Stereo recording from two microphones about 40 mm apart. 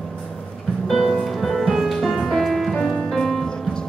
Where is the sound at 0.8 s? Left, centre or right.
Centre.